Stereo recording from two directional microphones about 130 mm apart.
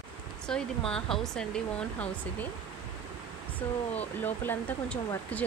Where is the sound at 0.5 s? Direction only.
5° left (ahead or behind).